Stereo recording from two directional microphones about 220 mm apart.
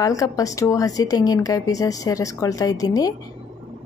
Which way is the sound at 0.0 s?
15° left (ahead or behind).